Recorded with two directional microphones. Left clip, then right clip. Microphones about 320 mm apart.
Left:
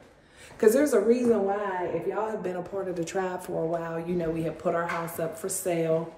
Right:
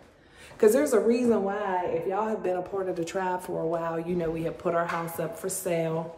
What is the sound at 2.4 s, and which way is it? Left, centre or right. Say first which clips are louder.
Speech: right 3 dB; centre.